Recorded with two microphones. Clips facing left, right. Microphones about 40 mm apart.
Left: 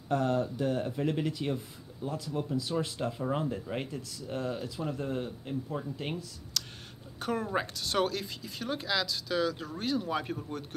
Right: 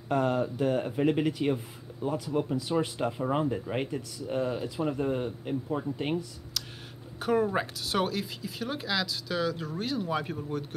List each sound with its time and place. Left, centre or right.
0.1 s speech: centre
6.5 s a sound: centre
7.2 s speech: centre